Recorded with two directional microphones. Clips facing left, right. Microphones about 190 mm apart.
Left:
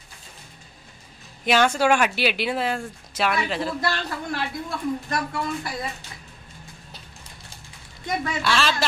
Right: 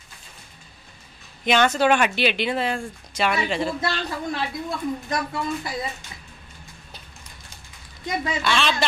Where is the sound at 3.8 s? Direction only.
20° right (ahead or behind).